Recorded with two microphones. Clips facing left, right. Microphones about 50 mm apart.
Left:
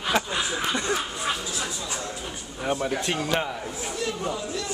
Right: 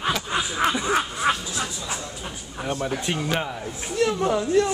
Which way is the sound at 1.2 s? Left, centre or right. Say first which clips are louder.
Right 6 dB; right.